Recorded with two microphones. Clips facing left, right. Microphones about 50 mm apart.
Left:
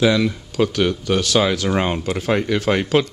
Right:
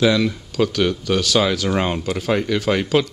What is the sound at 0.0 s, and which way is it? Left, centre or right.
Speech, centre.